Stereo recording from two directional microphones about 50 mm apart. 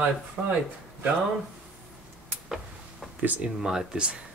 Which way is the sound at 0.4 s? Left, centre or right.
Right.